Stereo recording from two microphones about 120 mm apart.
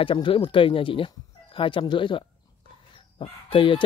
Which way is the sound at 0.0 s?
45° left (ahead or behind).